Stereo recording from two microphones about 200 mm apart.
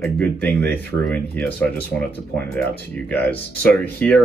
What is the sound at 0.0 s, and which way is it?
Speech, 10° left (ahead or behind).